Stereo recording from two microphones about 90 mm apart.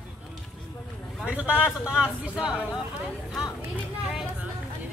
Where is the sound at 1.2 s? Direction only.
15° right (ahead or behind).